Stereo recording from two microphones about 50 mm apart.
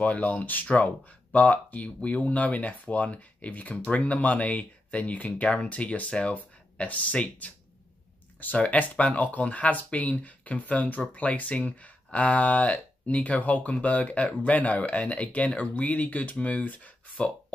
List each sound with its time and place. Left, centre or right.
0.0 s speech: left
8.5 s speech: left